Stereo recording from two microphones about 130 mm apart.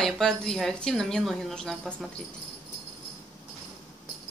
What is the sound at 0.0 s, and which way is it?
A woman's voice, 5° left (ahead or behind).